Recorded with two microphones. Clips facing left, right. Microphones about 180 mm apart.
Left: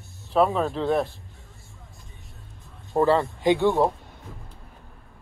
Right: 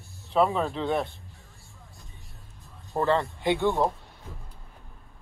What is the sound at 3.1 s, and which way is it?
Speech, 15° left (ahead or behind).